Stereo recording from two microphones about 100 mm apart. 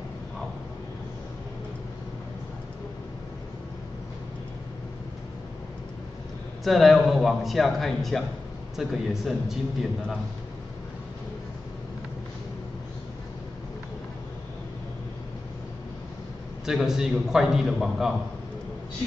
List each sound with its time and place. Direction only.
6.6 s a man's voice: centre (ahead or behind)
16.6 s a man's voice: 5° right (ahead or behind)